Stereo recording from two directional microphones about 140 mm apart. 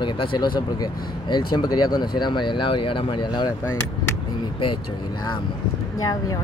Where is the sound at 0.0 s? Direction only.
35° left (ahead or behind).